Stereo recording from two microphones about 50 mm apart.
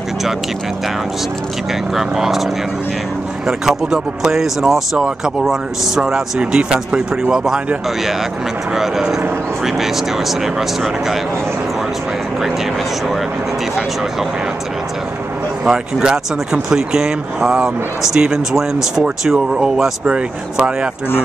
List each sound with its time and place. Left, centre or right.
2.0 s speech: centre
15.6 s speech: centre
20.1 s speech: centre